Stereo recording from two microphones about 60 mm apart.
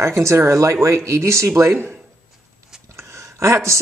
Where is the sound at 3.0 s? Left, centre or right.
Right.